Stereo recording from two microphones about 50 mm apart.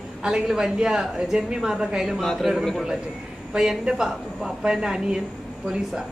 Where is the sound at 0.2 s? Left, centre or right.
Centre.